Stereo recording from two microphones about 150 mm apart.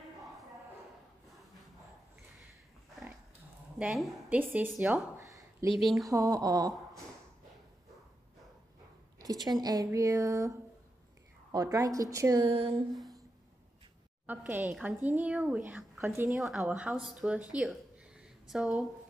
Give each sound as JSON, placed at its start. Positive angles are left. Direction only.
{"t": 3.7, "sound": "a woman's voice", "side_deg": -5}
{"t": 5.8, "sound": "speech", "side_deg": 0}
{"t": 6.0, "sound": "speech", "side_deg": -25}
{"t": 9.2, "sound": "speech", "side_deg": -25}
{"t": 12.4, "sound": "a sound", "side_deg": -40}
{"t": 14.2, "sound": "a woman's voice", "side_deg": -10}
{"t": 16.3, "sound": "speech", "side_deg": 0}